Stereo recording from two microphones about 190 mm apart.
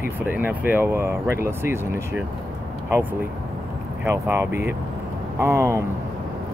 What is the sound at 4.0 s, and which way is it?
Speech, 10° right (ahead or behind).